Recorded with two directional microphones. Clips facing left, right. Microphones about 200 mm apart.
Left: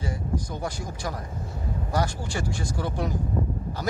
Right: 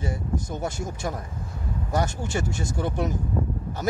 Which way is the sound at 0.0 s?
25° right (ahead or behind).